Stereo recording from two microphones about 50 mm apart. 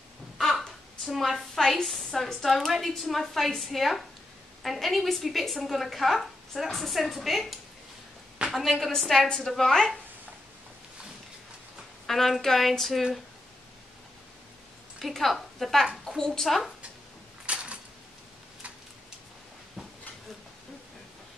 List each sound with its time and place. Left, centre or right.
0.4 s a sound: centre
2.1 s a woman's voice: centre
9.3 s a woman's voice: centre
12.1 s a woman's voice: centre
15.1 s a woman's voice: centre
17.5 s a sound: right